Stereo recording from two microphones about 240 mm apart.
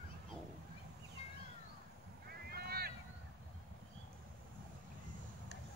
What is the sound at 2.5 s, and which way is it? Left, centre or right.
Boat, right.